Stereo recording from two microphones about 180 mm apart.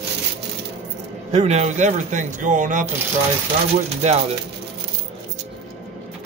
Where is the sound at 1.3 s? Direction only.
40° right (ahead or behind).